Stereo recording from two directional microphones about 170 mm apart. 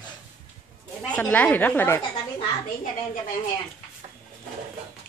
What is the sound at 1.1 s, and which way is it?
Speech, 10° left (ahead or behind).